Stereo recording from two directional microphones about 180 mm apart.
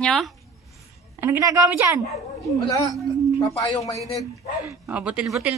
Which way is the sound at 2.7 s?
25° left (ahead or behind).